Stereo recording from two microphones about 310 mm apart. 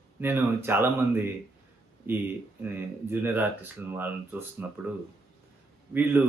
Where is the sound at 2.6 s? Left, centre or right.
Centre.